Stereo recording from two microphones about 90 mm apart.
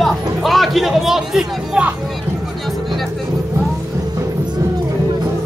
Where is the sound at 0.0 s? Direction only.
Centre (ahead or behind).